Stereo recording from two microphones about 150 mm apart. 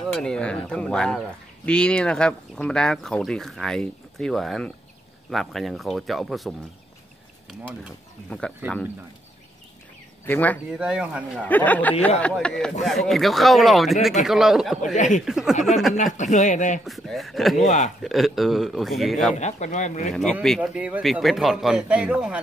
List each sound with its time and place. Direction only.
0.1 s speech: 5° left (ahead or behind)
8.3 s speech: 5° left (ahead or behind)
10.2 s speech: 10° left (ahead or behind)
10.7 s speech: 5° right (ahead or behind)
11.4 s speech: 10° left (ahead or behind)
15.0 s speech: 55° left (ahead or behind)
15.2 s speech: 5° right (ahead or behind)
16.2 s speech: 55° left (ahead or behind)
16.8 s speech: centre (ahead or behind)
17.6 s speech: 55° left (ahead or behind)
18.0 s speech: centre (ahead or behind)
19.3 s speech: 50° left (ahead or behind)
20.4 s speech: centre (ahead or behind)
20.7 s speech: 10° right (ahead or behind)